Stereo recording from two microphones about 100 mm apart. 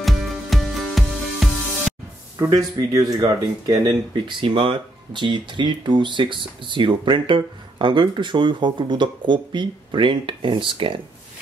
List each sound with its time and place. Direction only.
0.0 s music: centre (ahead or behind)
2.5 s speech: 35° right (ahead or behind); by 11.0 s 55° right (ahead or behind)